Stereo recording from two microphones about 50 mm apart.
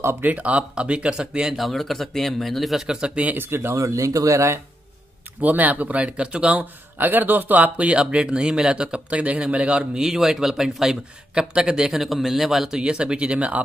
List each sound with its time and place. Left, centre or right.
0.2 s speech: right
1.6 s speech: centre
3.0 s speech: right
3.3 s speech: right
3.7 s speech: right
5.4 s speech: right
6.6 s speech: right
7.7 s speech: right
10.0 s a man's voice: centre